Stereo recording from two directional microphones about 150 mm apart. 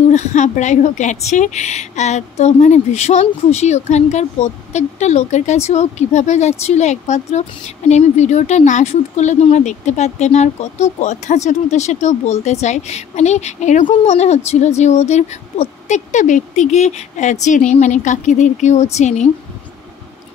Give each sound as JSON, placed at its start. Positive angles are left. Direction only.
{"t": 0.1, "sound": "speech", "side_deg": 50}